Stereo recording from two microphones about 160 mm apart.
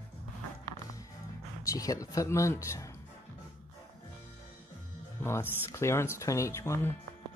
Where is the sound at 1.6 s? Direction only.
20° left (ahead or behind).